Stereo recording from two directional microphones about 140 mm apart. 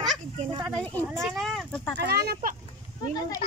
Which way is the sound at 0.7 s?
5° left (ahead or behind).